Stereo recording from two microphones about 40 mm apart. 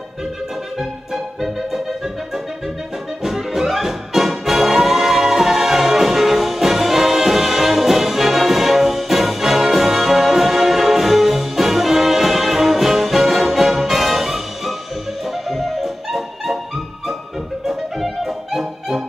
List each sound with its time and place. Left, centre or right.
0.7 s accordion: centre
3.2 s music: centre